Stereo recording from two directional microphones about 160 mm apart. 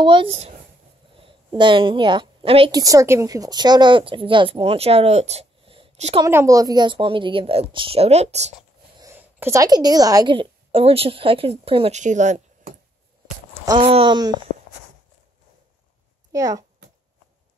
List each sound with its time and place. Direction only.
0.0 s a woman's voice: 30° right (ahead or behind)
2.7 s speech: 20° right (ahead or behind); by 6.1 s 40° right (ahead or behind)
6.3 s speech: 20° right (ahead or behind); by 8.5 s 45° right (ahead or behind)
9.0 s a woman's voice: 15° right (ahead or behind); by 12.0 s 35° right (ahead or behind)
12.0 s speech: 50° right (ahead or behind)
13.7 s speech: 35° right (ahead or behind)
16.3 s speech: 20° right (ahead or behind)